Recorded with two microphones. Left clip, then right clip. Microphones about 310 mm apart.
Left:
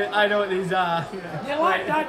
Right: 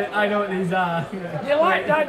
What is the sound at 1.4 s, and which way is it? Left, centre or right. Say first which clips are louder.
Speech: right 4 dB; centre.